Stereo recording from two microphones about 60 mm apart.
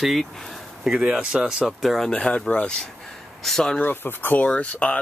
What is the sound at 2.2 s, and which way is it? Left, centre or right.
Speech, centre.